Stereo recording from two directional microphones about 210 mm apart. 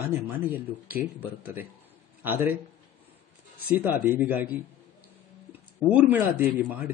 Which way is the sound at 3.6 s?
10° right (ahead or behind).